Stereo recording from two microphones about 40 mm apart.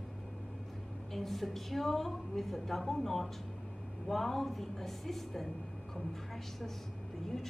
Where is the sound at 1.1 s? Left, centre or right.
Centre.